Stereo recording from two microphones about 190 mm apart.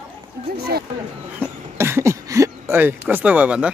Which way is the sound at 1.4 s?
15° right (ahead or behind).